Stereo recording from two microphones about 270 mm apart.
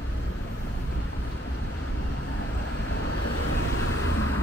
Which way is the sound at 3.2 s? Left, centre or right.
Left.